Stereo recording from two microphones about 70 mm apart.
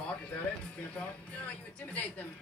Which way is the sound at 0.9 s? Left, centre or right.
Centre.